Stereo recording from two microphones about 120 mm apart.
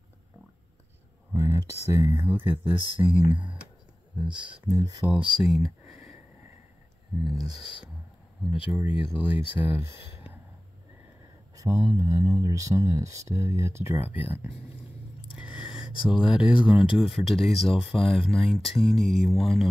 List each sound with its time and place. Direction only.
1.3 s speech: 20° right (ahead or behind)
4.6 s speech: 30° right (ahead or behind)
5.2 s speech: 5° right (ahead or behind)
7.2 s speech: 5° right (ahead or behind)
11.5 s speech: 25° right (ahead or behind)
15.3 s gasp: 5° right (ahead or behind)
16.0 s speech: 5° right (ahead or behind)